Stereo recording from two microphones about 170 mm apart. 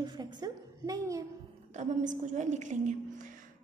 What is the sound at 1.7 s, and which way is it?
A woman's voice, 45° right (ahead or behind).